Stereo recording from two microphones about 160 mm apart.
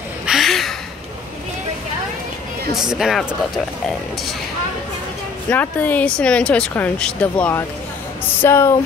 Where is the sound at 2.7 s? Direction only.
Centre (ahead or behind).